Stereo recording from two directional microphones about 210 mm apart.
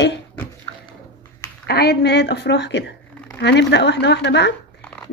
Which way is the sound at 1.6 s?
50° left (ahead or behind).